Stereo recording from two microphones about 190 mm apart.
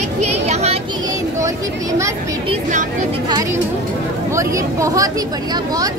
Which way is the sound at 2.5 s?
40° right (ahead or behind).